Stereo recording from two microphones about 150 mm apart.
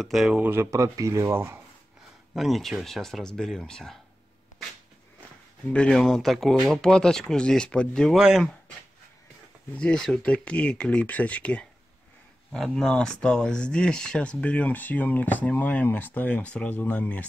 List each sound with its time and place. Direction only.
0.0 s speech: centre (ahead or behind)
2.3 s speech: centre (ahead or behind)
5.7 s speech: 5° left (ahead or behind)
9.8 s speech: 5° left (ahead or behind)